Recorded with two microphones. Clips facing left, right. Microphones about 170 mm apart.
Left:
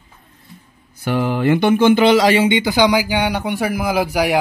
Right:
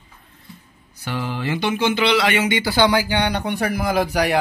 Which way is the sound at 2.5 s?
15° left (ahead or behind).